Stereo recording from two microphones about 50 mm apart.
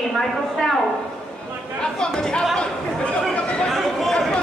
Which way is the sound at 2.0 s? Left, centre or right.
Centre.